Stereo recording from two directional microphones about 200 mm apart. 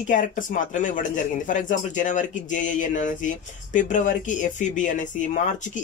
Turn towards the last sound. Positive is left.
turn(degrees=40)  # may be behind; listen again after turning